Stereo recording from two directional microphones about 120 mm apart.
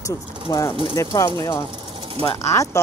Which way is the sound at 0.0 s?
25° left (ahead or behind).